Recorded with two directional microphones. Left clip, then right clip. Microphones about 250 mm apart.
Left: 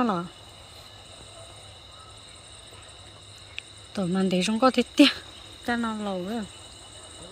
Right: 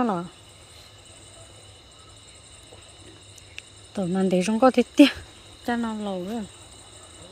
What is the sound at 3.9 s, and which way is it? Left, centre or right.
Speech, centre.